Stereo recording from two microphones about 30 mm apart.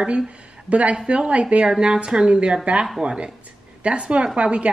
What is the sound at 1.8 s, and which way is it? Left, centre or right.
Speech, right.